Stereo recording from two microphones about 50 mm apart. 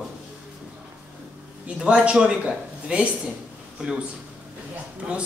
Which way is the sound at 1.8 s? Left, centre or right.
Centre.